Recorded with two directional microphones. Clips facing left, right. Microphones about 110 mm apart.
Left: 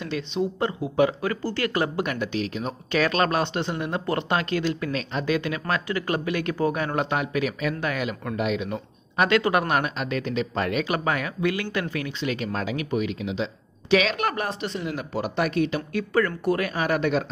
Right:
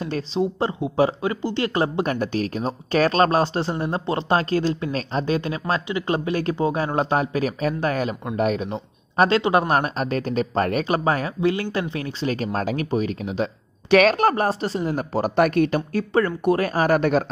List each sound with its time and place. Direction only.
0.0 s speech: 35° right (ahead or behind); by 14.1 s 50° right (ahead or behind)
14.1 s speech: 35° right (ahead or behind); by 15.8 s 50° right (ahead or behind)
16.1 s speech: 25° right (ahead or behind)
16.6 s speech: 40° right (ahead or behind)